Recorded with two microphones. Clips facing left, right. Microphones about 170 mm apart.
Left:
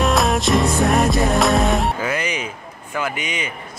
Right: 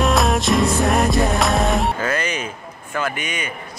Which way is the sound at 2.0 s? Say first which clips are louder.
Even; 15° left (ahead or behind).